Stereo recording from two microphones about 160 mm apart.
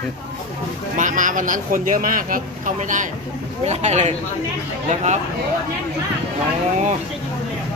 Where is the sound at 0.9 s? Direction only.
55° right (ahead or behind).